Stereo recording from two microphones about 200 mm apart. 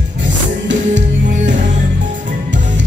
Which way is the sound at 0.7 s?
65° right (ahead or behind).